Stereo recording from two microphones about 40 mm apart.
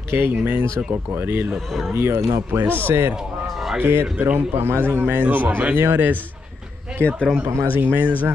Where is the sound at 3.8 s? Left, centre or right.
Right.